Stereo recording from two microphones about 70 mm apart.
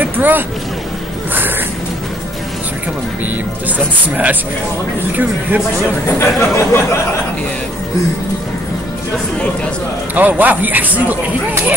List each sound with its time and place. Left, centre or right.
0.0 s boat: right
3.6 s a man's voice: right
6.0 s speech: left
10.1 s a man's voice: right